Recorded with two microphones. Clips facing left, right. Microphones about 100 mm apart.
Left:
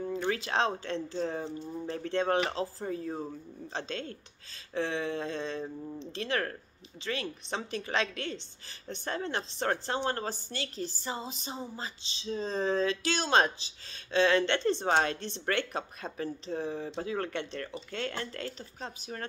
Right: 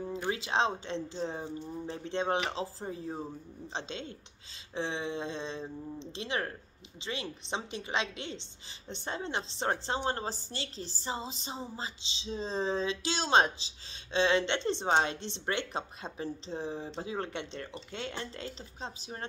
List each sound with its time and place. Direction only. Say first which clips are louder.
0.2 s speech: even; 20° right (ahead or behind)